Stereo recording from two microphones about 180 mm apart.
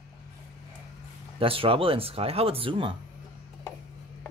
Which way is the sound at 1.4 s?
30° right (ahead or behind).